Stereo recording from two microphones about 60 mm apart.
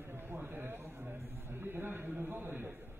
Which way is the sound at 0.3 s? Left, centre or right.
Right.